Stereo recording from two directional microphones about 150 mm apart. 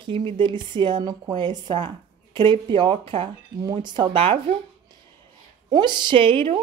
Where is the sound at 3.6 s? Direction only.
25° right (ahead or behind).